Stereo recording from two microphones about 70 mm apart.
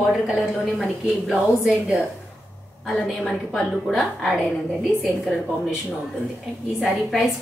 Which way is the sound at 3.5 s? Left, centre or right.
Centre.